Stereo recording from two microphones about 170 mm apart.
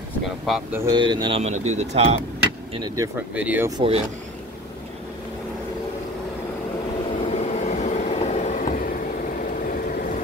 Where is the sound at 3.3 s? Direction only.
10° right (ahead or behind).